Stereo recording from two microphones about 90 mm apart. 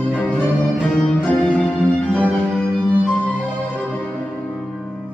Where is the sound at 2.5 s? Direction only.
15° right (ahead or behind).